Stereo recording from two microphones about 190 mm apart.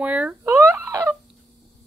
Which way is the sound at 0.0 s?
5° right (ahead or behind).